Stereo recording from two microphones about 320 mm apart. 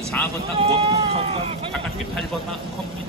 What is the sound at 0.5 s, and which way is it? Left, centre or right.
Speech, centre.